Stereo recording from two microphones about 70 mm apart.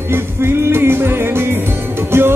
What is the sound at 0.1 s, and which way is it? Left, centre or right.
Music, right.